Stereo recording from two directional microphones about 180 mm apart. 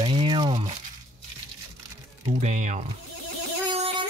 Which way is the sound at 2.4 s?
40° right (ahead or behind).